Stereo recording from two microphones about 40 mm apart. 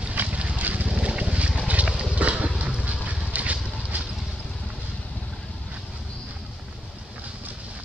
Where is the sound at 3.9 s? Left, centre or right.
Right.